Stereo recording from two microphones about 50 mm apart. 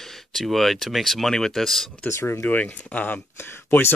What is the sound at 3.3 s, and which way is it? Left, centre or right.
Speech, left.